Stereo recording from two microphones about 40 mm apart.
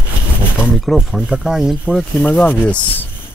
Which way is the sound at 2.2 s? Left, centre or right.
Left.